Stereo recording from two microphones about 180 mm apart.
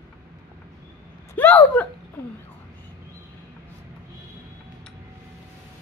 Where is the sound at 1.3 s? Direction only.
10° left (ahead or behind).